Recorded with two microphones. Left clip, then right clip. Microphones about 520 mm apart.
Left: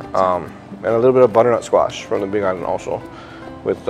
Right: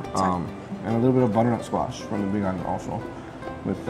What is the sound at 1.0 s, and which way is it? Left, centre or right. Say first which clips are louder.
Speech: left 10 dB; left.